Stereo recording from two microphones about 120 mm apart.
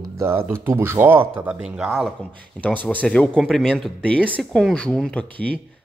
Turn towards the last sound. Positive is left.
turn(degrees=10)  # may be behind; listen again after turning